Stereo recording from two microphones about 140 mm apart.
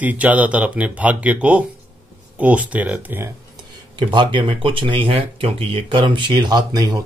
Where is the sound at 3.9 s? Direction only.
35° right (ahead or behind).